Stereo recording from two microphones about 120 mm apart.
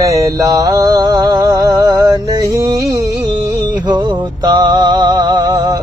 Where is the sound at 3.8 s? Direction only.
40° right (ahead or behind).